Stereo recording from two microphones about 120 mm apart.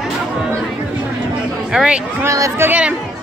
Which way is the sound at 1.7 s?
5° right (ahead or behind).